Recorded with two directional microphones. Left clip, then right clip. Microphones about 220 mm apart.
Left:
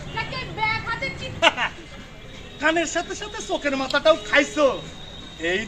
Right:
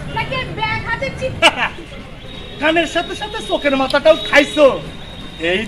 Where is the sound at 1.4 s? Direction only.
20° right (ahead or behind).